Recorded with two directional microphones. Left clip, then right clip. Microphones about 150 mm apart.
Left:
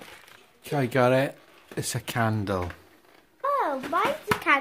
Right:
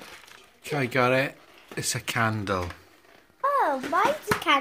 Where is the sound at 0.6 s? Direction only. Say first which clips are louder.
Left 1 dB; 35° left (ahead or behind).